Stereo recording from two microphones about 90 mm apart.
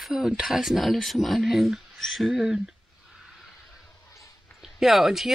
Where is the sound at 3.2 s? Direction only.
Centre (ahead or behind).